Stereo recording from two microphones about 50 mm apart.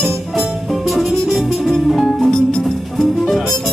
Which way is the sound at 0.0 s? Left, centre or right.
Centre.